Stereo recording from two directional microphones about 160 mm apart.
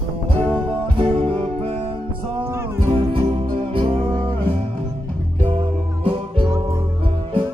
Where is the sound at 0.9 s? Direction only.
35° right (ahead or behind).